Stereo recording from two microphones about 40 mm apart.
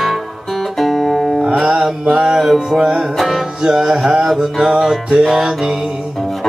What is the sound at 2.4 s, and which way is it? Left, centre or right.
Music, centre.